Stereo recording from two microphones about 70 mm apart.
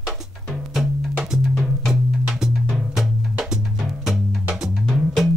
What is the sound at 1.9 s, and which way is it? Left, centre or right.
Music, centre.